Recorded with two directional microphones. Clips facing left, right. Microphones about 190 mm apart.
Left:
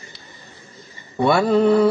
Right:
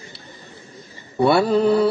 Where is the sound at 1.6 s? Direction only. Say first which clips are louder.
Left 2 dB; 35° right (ahead or behind).